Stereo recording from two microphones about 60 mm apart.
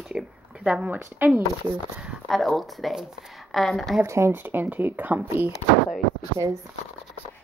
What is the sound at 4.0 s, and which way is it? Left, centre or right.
Speech, right.